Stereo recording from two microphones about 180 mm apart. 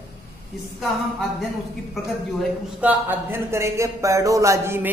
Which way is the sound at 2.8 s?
10° right (ahead or behind).